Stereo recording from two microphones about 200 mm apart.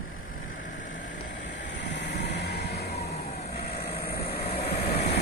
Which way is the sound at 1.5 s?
65° left (ahead or behind).